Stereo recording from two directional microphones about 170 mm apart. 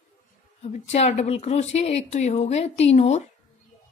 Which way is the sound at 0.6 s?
40° left (ahead or behind).